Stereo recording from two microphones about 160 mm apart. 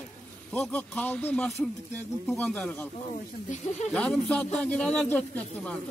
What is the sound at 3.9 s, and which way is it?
Speech, 5° left (ahead or behind).